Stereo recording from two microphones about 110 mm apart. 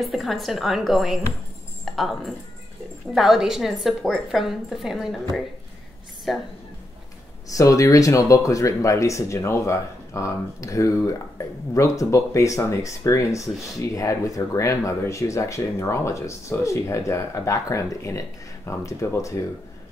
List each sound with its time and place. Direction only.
0.1 s a woman's voice: centre (ahead or behind)
7.4 s speech: 30° left (ahead or behind)